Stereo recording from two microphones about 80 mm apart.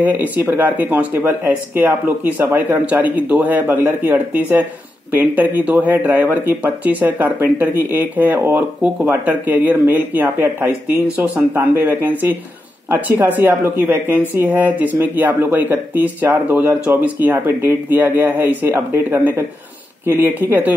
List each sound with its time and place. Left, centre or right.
0.0 s speech: right